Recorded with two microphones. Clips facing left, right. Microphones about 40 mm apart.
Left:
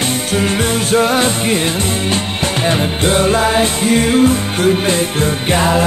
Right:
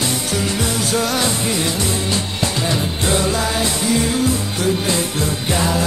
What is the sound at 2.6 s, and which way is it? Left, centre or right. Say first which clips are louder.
Music: left 8 dB; left.